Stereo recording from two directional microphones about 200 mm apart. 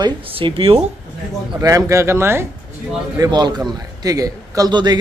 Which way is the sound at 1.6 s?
15° right (ahead or behind).